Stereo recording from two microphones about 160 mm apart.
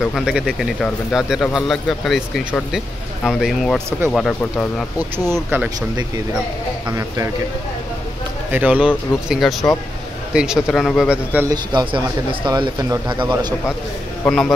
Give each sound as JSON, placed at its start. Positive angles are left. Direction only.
{"t": 0.0, "sound": "speech", "side_deg": 0}
{"t": 5.3, "sound": "speech", "side_deg": -15}
{"t": 6.9, "sound": "speech", "side_deg": -20}
{"t": 8.5, "sound": "speech", "side_deg": -10}
{"t": 11.4, "sound": "speech", "side_deg": -25}
{"t": 14.2, "sound": "speech", "side_deg": 0}